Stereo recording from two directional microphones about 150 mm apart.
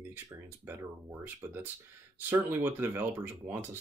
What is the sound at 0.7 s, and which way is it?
Speech, 15° right (ahead or behind).